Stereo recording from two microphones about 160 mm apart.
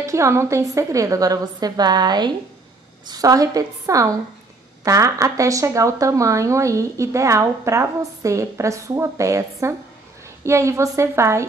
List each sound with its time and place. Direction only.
0.0 s a woman's voice: 20° right (ahead or behind)